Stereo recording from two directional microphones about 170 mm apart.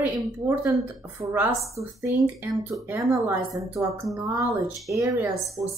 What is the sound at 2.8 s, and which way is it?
Speech, 15° right (ahead or behind).